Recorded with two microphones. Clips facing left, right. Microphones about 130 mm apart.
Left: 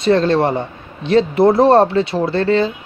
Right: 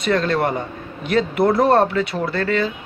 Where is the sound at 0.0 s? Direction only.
30° left (ahead or behind).